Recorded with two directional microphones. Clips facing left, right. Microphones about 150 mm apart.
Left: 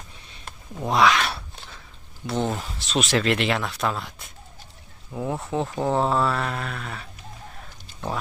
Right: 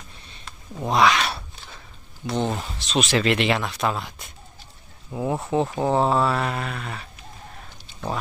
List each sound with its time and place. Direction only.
0.7 s speech: centre (ahead or behind)
5.1 s speech: 10° right (ahead or behind)